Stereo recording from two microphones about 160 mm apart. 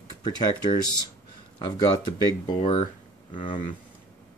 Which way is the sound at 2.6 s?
45° left (ahead or behind).